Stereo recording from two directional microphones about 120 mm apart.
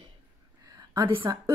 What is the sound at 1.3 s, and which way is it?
Speech, 30° right (ahead or behind).